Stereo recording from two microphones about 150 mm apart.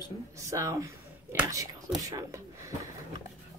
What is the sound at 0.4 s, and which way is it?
Speech, 20° right (ahead or behind).